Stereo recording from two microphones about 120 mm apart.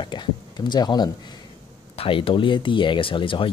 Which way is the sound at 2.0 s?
45° left (ahead or behind).